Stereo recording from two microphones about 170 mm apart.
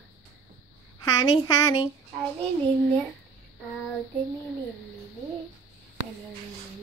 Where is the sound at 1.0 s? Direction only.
20° left (ahead or behind).